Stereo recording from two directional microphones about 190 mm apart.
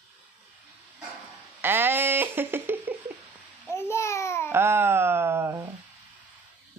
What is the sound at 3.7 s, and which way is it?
Babbling, 15° left (ahead or behind).